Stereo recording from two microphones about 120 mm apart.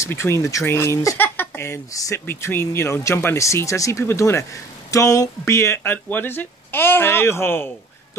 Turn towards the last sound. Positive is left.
turn(degrees=20)  # may be behind; listen again after turning